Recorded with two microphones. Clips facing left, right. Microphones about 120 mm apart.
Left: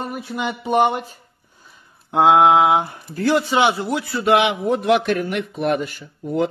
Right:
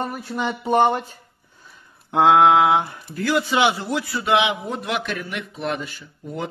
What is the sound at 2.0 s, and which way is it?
Mantra, 15° left (ahead or behind).